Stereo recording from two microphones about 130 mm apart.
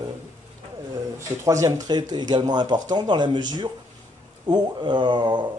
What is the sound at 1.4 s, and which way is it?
Speech, 25° right (ahead or behind).